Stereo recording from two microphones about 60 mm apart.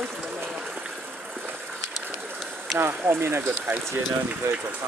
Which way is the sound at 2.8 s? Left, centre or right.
Right.